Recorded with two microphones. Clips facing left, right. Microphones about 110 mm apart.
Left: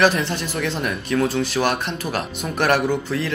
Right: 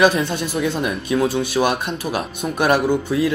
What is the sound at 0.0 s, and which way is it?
Speech, 15° right (ahead or behind).